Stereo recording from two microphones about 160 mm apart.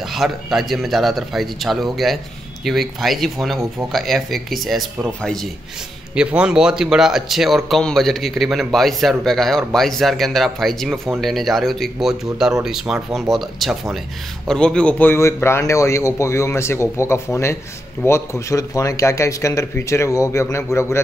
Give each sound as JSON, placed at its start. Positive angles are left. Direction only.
{"t": 0.0, "sound": "a man's voice", "side_deg": 0}